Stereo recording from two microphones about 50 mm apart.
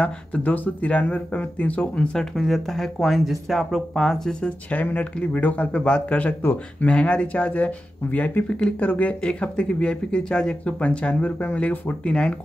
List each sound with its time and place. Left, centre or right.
0.0 s speech: left
2.1 s speech: centre
4.6 s speech: left
6.9 s speech: left
8.5 s speech: centre
8.8 s speech: left
9.2 s speech: left
11.9 s speech: centre